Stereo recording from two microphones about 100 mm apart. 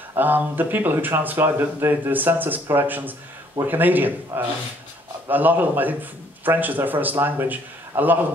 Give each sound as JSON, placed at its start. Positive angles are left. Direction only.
{"t": 0.1, "sound": "a man's voice", "side_deg": -20}